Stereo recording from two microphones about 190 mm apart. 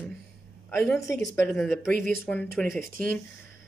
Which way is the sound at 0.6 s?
15° left (ahead or behind).